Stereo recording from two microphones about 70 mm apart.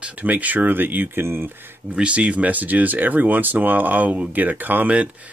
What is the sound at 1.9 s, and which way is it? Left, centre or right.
Speech, centre.